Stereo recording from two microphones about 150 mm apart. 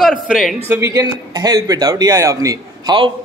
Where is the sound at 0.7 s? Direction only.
20° right (ahead or behind).